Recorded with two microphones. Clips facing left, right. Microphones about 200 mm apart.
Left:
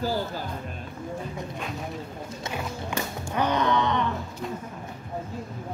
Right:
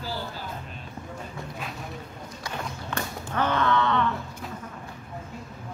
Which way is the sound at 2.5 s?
10° left (ahead or behind).